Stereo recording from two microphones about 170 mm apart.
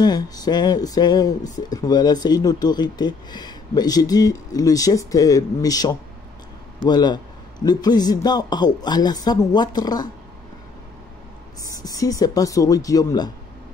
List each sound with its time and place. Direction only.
0.0 s speech: 25° left (ahead or behind)
11.6 s speech: 20° left (ahead or behind)